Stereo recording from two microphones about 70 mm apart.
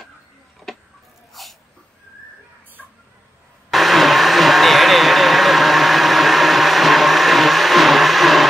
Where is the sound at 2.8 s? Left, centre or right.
Centre.